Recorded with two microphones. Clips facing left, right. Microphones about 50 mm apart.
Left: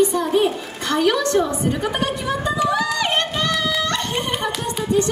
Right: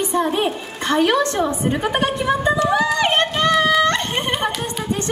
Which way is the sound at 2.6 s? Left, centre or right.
Right.